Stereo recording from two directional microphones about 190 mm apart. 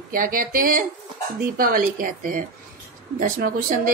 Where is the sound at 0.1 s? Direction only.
50° right (ahead or behind).